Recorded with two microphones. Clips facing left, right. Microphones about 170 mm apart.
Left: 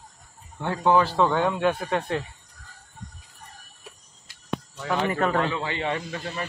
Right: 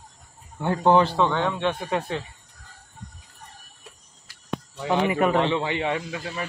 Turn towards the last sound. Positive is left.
turn(degrees=-5)  # may be behind; listen again after turning